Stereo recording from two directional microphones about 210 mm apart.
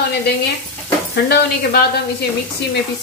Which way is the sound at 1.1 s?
50° left (ahead or behind).